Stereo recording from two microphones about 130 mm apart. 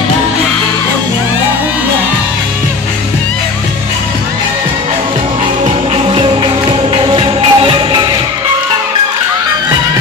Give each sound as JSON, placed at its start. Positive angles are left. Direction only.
{"t": 6.0, "sound": "music", "side_deg": -40}